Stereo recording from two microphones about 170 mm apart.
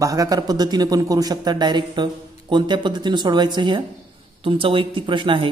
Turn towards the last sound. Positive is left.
turn(degrees=-30)  # may be behind; listen again after turning